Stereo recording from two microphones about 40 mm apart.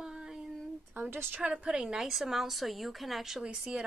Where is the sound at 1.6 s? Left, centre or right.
Right.